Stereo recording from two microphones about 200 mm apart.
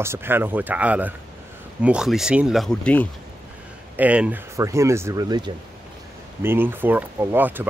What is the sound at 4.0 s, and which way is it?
Speech, 5° right (ahead or behind).